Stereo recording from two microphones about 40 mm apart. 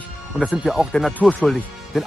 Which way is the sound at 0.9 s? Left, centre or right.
Centre.